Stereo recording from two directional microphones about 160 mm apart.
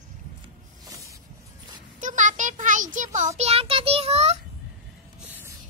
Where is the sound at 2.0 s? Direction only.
50° right (ahead or behind).